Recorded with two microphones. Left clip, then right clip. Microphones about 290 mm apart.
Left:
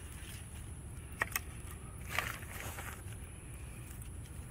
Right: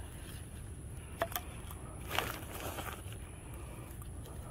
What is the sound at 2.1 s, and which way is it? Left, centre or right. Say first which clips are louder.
Vehicle: right 1 dB; right.